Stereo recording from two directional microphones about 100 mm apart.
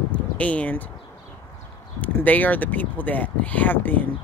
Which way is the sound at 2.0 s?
15° left (ahead or behind).